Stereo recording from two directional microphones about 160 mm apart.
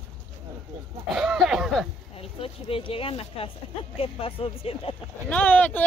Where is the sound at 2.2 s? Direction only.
35° left (ahead or behind).